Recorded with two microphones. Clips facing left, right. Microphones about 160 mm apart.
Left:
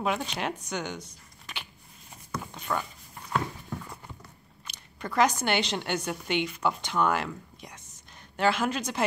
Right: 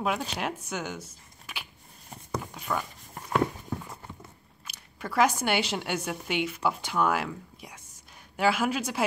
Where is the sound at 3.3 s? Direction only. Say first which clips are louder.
Right 4 dB; 20° right (ahead or behind).